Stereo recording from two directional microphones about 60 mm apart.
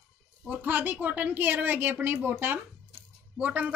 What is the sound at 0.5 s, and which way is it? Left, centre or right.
A woman's voice, right.